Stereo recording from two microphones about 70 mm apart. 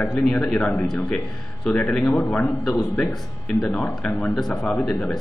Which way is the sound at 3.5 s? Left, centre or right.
Centre.